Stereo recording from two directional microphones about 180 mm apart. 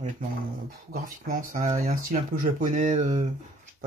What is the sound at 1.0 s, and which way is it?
Speech, 50° right (ahead or behind).